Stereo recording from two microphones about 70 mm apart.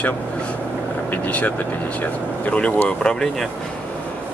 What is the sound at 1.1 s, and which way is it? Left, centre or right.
Speech, left.